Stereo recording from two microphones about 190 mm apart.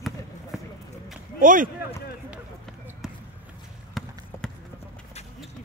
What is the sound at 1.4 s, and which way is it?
Speech, 45° right (ahead or behind).